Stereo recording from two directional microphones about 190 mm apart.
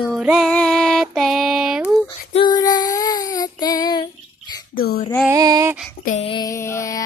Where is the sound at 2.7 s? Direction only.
20° left (ahead or behind).